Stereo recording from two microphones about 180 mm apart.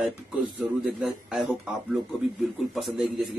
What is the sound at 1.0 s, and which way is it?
Speech, centre (ahead or behind).